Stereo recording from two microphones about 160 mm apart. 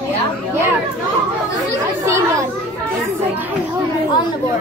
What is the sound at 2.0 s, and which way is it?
Children playing, 15° right (ahead or behind).